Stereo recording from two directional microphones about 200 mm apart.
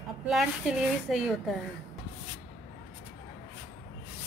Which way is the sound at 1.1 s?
Centre (ahead or behind).